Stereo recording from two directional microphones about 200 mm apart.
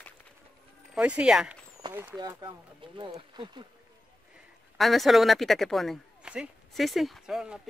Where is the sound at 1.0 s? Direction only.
5° right (ahead or behind).